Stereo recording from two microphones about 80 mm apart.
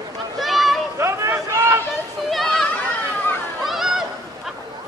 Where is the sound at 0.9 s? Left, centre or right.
Right.